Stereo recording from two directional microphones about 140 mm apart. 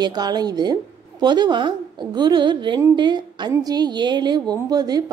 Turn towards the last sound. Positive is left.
turn(degrees=-30)  # may be behind; listen again after turning